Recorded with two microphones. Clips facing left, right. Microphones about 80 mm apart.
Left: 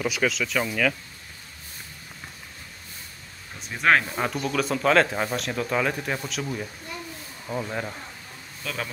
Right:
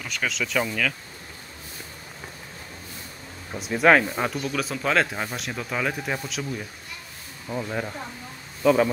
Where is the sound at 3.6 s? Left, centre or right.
Centre.